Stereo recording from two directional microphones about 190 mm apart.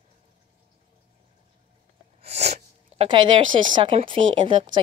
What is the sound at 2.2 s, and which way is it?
Sneeze, 35° right (ahead or behind).